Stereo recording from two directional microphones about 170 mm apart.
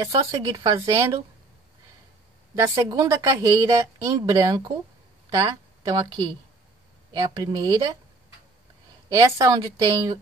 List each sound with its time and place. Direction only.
0.3 s speech: 25° right (ahead or behind)
2.5 s speech: 20° right (ahead or behind)
7.2 s speech: 25° right (ahead or behind)
9.1 s speech: 20° right (ahead or behind)